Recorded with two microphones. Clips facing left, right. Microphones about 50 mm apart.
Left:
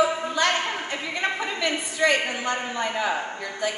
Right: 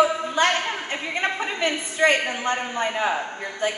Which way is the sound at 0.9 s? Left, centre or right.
Right.